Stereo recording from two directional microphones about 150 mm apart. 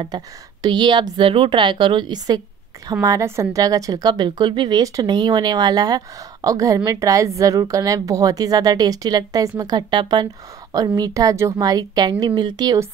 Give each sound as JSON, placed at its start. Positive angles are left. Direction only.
{"t": 0.0, "sound": "a woman's voice", "side_deg": -30}